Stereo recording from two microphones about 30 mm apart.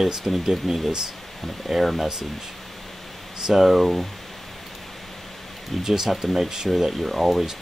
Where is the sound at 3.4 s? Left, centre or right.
Centre.